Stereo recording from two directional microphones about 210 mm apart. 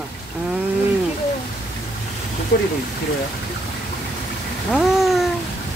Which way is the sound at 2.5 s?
50° left (ahead or behind).